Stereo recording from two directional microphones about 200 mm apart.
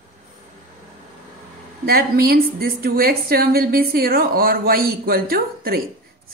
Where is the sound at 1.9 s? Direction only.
50° right (ahead or behind).